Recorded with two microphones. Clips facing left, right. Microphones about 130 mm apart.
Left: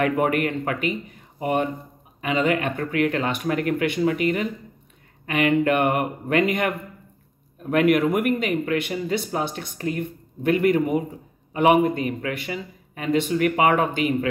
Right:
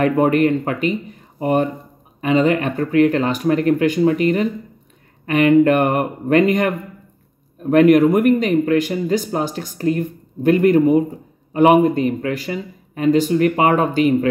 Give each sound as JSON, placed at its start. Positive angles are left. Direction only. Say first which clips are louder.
{"t": 0.0, "sound": "speech", "louder": "right 6 dB", "side_deg": -35}
{"t": 7.7, "sound": "speech", "louder": "right 7 dB", "side_deg": -40}